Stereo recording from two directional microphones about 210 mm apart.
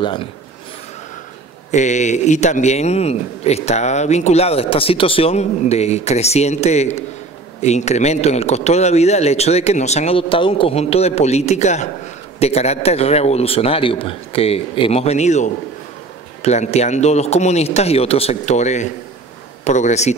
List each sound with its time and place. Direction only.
0.0 s a man's voice: 20° left (ahead or behind)
1.7 s a man's voice: 35° left (ahead or behind)